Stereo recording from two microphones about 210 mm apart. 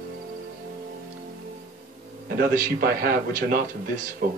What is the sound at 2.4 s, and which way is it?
A man's voice, 45° right (ahead or behind).